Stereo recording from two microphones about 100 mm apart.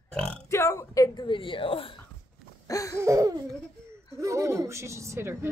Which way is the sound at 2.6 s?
35° left (ahead or behind).